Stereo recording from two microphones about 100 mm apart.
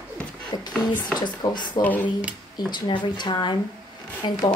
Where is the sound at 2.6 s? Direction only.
50° left (ahead or behind).